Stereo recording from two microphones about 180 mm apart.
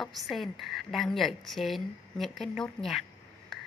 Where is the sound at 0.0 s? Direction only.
Centre (ahead or behind).